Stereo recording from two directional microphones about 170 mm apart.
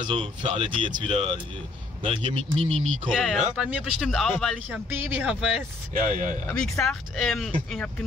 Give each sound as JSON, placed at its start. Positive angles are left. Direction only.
{"t": 0.1, "sound": "speech", "side_deg": -35}
{"t": 2.5, "sound": "speech", "side_deg": 5}
{"t": 4.6, "sound": "speech", "side_deg": -10}
{"t": 5.9, "sound": "speech", "side_deg": -50}
{"t": 6.9, "sound": "speech", "side_deg": 5}